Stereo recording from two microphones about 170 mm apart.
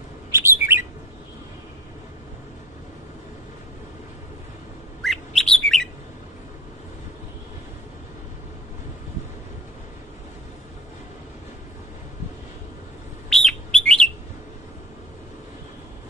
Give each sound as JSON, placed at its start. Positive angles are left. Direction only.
{"t": 0.3, "sound": "bird", "side_deg": -15}
{"t": 5.0, "sound": "bird", "side_deg": 0}
{"t": 13.3, "sound": "bird", "side_deg": 0}